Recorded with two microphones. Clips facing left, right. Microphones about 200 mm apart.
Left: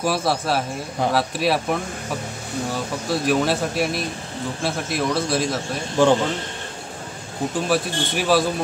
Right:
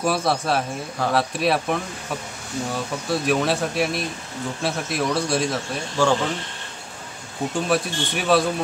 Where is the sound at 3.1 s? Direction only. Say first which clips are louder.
Left 1 dB; centre (ahead or behind).